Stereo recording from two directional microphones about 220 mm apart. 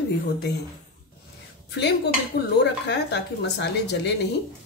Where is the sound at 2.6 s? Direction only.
50° left (ahead or behind).